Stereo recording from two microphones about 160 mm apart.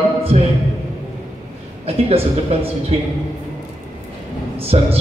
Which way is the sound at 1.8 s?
35° right (ahead or behind).